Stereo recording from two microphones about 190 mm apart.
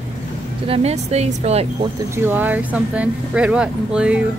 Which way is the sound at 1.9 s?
10° right (ahead or behind).